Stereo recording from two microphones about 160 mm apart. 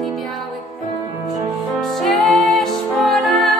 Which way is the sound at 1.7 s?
Centre (ahead or behind).